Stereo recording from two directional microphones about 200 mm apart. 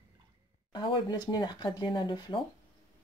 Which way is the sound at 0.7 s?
20° left (ahead or behind).